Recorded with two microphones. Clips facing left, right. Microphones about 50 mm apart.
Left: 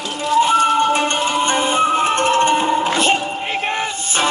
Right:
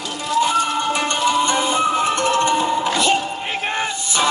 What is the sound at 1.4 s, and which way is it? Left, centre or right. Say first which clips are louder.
Music: left 2 dB; left.